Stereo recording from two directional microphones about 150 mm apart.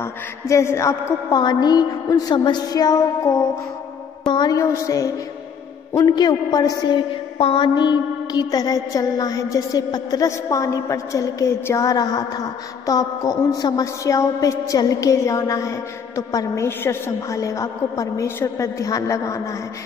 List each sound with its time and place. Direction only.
0.0 s a woman's voice: 20° left (ahead or behind)